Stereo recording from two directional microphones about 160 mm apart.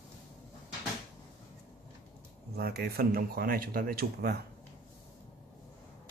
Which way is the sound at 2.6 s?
80° right.